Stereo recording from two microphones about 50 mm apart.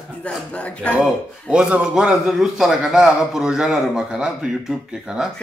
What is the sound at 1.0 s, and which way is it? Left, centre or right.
A man's voice, centre.